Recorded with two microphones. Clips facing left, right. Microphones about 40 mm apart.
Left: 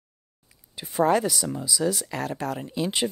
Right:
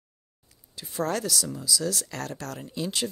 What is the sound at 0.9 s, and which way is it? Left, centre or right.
Speech, centre.